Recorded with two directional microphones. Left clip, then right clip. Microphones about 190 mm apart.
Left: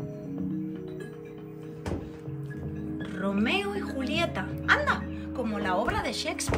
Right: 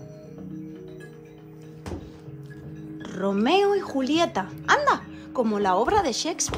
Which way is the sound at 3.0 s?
15° right (ahead or behind).